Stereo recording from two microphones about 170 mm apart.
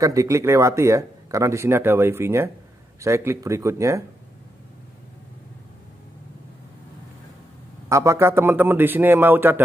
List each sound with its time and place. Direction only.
0.0 s speech: 20° right (ahead or behind)
7.9 s speech: 15° right (ahead or behind)